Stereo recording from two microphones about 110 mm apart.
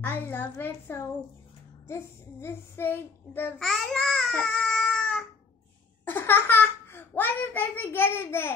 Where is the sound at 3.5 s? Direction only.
5° left (ahead or behind).